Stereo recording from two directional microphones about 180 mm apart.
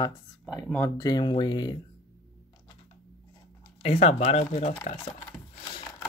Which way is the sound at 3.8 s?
30° left (ahead or behind).